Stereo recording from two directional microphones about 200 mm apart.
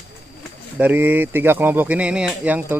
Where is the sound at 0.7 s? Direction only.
10° right (ahead or behind).